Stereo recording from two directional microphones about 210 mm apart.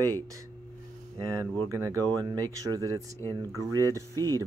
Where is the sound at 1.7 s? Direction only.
15° right (ahead or behind).